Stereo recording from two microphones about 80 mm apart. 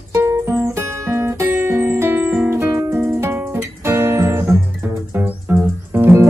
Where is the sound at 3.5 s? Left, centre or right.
Right.